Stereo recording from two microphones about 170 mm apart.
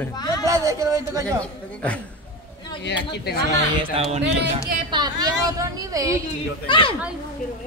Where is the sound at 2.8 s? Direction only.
90° left.